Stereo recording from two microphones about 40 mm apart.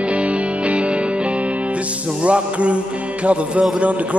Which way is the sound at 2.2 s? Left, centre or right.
Right.